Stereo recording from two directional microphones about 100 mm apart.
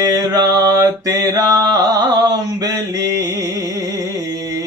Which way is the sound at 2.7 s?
25° right (ahead or behind).